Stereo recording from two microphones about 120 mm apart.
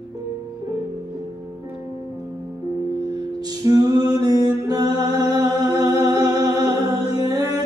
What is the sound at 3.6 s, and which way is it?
Music, 30° right (ahead or behind).